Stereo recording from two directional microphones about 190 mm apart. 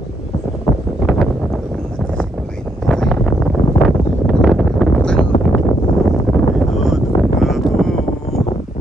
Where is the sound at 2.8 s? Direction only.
Centre (ahead or behind).